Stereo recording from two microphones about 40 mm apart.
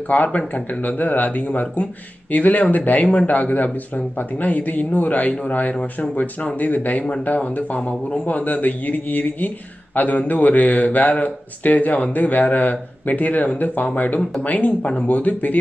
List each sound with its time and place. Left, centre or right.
0.1 s a man's voice: left